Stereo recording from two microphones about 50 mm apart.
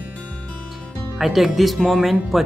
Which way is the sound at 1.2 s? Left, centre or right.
Centre.